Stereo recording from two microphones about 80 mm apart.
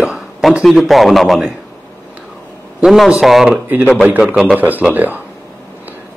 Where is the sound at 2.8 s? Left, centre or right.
Centre.